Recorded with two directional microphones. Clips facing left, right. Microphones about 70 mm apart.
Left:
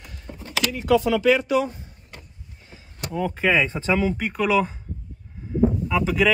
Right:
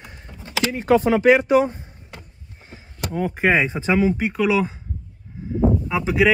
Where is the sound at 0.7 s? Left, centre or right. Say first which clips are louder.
Right 3 dB; right.